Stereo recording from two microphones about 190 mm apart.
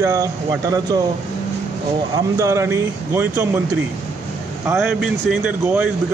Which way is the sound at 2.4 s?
15° right (ahead or behind).